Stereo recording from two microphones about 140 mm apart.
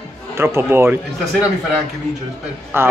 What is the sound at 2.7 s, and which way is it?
Speech, 15° right (ahead or behind).